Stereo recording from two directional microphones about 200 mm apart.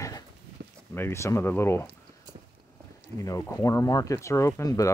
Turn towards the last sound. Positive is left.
turn(degrees=15)  # may be behind; listen again after turning